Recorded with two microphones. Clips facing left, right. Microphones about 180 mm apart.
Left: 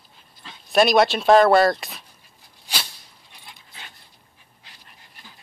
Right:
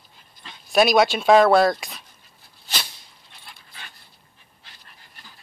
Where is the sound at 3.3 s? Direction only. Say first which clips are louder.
Even; 20° left (ahead or behind).